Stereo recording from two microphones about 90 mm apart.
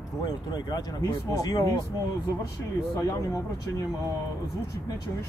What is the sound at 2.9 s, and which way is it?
Speech, 40° left (ahead or behind).